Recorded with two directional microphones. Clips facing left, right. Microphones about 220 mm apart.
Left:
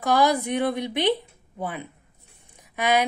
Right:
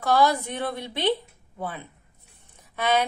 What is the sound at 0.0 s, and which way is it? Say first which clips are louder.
Speech: left 1 dB; 15° left (ahead or behind).